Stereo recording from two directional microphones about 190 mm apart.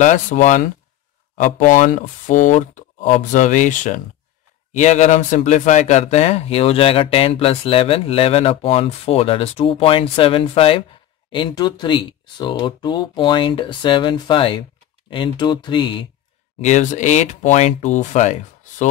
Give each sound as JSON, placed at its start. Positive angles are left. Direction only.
{"t": 0.0, "sound": "speech", "side_deg": 40}
{"t": 16.6, "sound": "speech", "side_deg": 40}